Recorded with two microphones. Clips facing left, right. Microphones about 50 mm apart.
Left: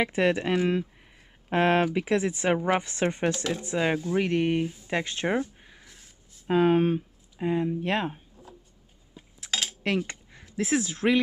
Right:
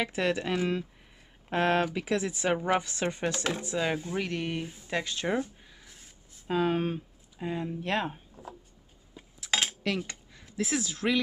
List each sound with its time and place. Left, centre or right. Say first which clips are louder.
0.0 s speech: left 5 dB; left
2.5 s speech: left 2 dB; centre
2.8 s speech: left 4 dB; left
5.6 s a sound: left 2 dB; left
6.4 s speech: left 6 dB; left
8.4 s a sound: right 4 dB; right
9.5 s cutlery: right 2 dB; centre
9.8 s speech: left 4 dB; left